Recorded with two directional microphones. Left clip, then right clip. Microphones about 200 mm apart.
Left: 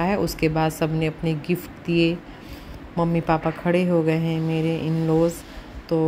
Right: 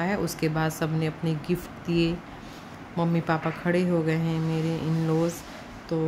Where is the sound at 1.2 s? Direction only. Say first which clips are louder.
Left 4 dB; 25° right (ahead or behind).